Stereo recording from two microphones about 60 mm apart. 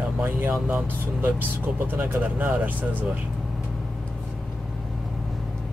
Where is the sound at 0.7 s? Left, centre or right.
Right.